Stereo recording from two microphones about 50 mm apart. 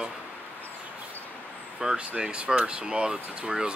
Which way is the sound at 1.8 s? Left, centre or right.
Centre.